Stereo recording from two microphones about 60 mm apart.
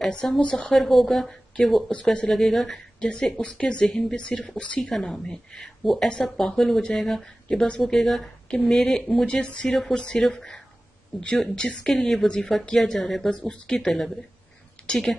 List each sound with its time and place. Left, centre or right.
0.5 s speech: centre
0.7 s speech: centre
3.1 s speech: centre
4.9 s speech: centre
11.9 s speech: centre